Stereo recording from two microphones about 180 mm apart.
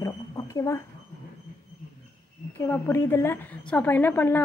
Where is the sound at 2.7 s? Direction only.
10° left (ahead or behind).